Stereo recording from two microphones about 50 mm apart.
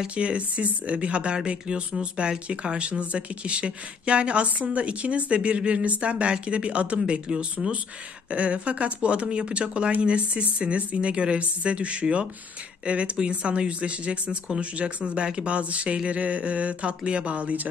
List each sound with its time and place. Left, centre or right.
0.0 s speech: right